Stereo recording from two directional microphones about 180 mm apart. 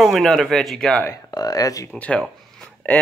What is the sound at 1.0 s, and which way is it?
Speech, 20° left (ahead or behind).